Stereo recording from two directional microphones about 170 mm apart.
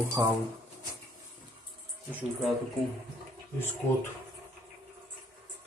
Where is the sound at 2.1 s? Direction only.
10° right (ahead or behind).